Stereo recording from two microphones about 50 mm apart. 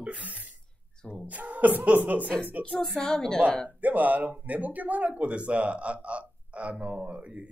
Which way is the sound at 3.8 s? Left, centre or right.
Right.